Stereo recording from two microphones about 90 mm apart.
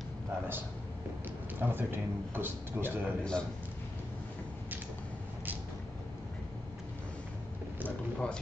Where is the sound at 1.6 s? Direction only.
25° right (ahead or behind).